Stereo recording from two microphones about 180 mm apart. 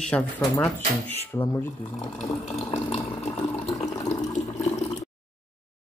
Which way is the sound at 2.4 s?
35° left (ahead or behind).